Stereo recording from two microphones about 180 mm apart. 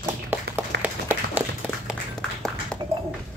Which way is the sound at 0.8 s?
10° right (ahead or behind).